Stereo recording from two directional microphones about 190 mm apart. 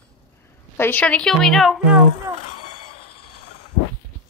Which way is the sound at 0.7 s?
10° left (ahead or behind).